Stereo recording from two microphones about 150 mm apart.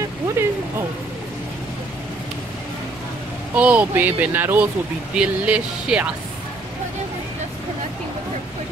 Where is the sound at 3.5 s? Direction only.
10° right (ahead or behind).